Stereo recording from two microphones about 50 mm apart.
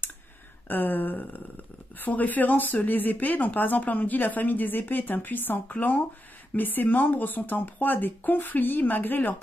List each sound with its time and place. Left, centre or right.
0.7 s speech: left